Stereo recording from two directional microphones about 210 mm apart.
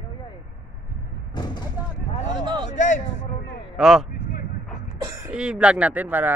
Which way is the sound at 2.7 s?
35° left (ahead or behind).